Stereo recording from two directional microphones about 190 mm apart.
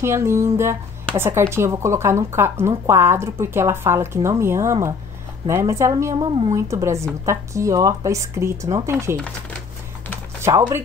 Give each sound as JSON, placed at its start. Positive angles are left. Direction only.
{"t": 0.0, "sound": "speech", "side_deg": -15}
{"t": 10.4, "sound": "speech", "side_deg": -15}